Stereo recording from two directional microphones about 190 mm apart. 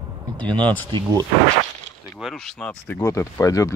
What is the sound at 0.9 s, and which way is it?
Speech, 20° right (ahead or behind).